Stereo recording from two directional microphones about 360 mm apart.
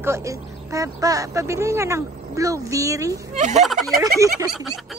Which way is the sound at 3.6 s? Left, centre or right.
Centre.